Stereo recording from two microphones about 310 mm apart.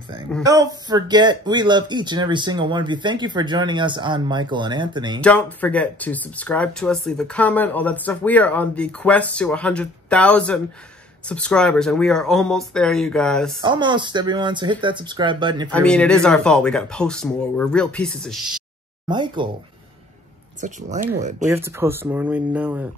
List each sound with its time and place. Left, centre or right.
0.4 s speech: centre
5.2 s speech: centre
13.6 s speech: centre
15.7 s speech: centre
19.0 s speech: centre
20.6 s speech: right
21.5 s speech: centre